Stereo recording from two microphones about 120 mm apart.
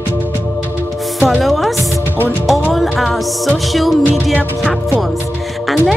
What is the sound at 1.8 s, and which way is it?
Music, 25° right (ahead or behind).